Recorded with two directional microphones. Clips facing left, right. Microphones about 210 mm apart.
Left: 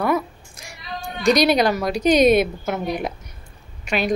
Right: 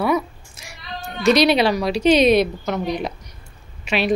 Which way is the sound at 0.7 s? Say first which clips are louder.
Left 1 dB; 15° left (ahead or behind).